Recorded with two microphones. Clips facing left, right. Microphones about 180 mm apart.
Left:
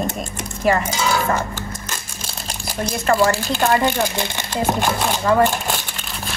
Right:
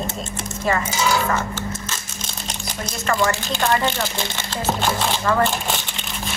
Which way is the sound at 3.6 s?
15° left (ahead or behind).